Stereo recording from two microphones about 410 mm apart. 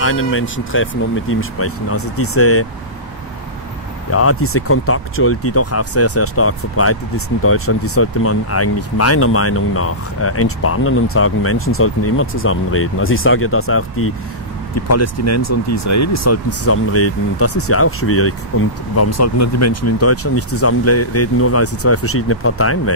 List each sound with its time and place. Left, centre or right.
0.0 s speech: left
4.1 s speech: left